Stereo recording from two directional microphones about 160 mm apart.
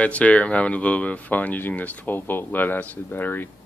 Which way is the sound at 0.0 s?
10° left (ahead or behind).